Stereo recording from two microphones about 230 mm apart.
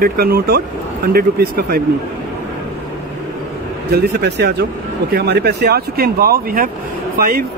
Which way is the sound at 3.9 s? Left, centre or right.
Right.